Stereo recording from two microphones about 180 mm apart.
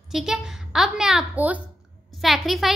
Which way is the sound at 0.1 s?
Centre (ahead or behind).